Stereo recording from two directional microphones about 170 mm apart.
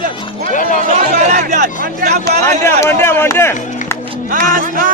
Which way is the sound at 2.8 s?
15° left (ahead or behind).